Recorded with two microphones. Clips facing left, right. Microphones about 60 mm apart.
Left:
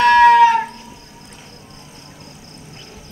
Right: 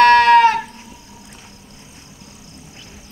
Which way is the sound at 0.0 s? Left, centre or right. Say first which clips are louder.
Even; right.